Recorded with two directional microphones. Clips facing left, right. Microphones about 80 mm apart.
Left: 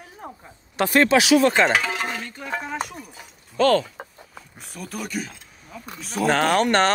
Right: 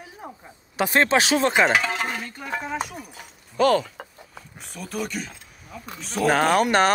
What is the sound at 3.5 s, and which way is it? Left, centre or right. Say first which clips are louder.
Speech: left 1 dB; centre.